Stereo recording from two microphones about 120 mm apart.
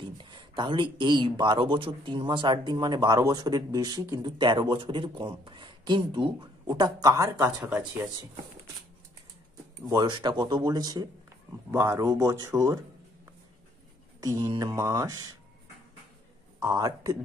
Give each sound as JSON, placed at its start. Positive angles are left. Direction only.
{"t": 0.0, "sound": "a man's voice", "side_deg": -40}
{"t": 9.8, "sound": "a man's voice", "side_deg": -35}
{"t": 11.7, "sound": "a man's voice", "side_deg": -20}
{"t": 16.6, "sound": "a man's voice", "side_deg": -30}